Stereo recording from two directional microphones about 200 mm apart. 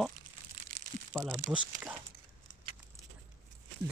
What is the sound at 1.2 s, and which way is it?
Speech, 15° right (ahead or behind).